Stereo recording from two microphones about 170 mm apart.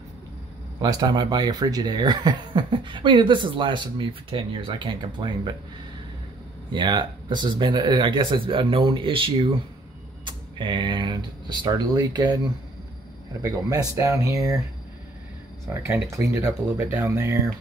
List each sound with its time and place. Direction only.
0.7 s speech: 25° right (ahead or behind)
6.7 s speech: 25° right (ahead or behind)
13.4 s speech: 20° right (ahead or behind)
15.7 s speech: 15° right (ahead or behind)